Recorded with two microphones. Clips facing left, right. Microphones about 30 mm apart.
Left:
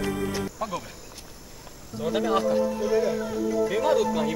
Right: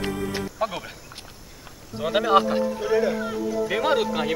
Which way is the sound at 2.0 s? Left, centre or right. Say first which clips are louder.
Right 5 dB; right.